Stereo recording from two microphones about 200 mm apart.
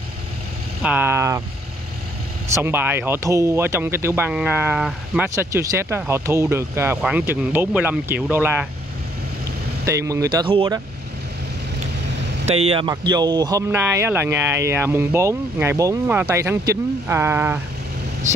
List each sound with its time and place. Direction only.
0.8 s speech: 10° right (ahead or behind)
2.4 s speech: 10° right (ahead or behind)
9.8 s speech: 15° right (ahead or behind)
12.4 s speech: 30° right (ahead or behind); by 17.6 s 10° right (ahead or behind)